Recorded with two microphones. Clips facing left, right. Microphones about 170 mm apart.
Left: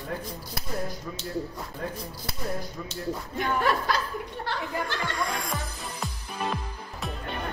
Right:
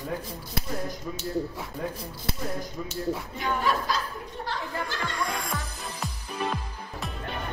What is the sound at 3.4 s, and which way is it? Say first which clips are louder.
Speech: left 4 dB; 60° left (ahead or behind).